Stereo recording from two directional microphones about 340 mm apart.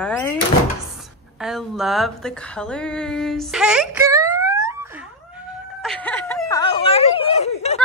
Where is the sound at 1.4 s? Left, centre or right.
Centre.